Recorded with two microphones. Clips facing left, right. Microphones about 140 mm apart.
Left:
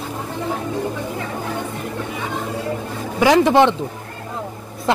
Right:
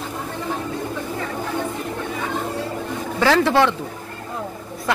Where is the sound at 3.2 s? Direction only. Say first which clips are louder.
Left 4 dB; 15° left (ahead or behind).